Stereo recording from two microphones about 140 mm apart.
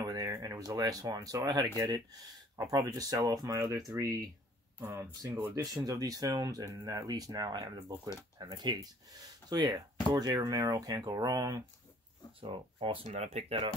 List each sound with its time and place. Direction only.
0.0 s speech: 25° right (ahead or behind)
5.2 s speech: 20° right (ahead or behind)
12.4 s speech: 40° right (ahead or behind)
13.1 s speech: 50° right (ahead or behind)